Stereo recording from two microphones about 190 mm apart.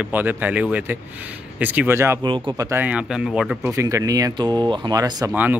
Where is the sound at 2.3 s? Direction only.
25° right (ahead or behind); by 3.7 s 5° right (ahead or behind).